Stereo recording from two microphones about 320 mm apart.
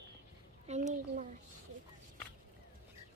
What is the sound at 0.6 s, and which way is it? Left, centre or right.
Speech, right.